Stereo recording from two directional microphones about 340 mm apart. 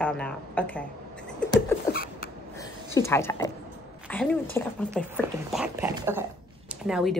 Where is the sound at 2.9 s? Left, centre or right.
Centre.